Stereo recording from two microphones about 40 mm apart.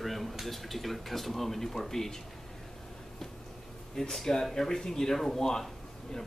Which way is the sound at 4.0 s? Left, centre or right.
Centre.